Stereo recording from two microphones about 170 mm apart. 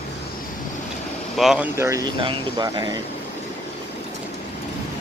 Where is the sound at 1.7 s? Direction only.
15° right (ahead or behind).